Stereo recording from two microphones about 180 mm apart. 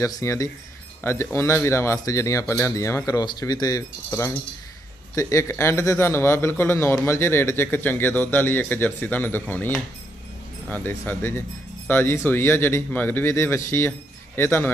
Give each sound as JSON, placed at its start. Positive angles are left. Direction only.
{"t": 0.0, "sound": "a man's voice", "side_deg": 15}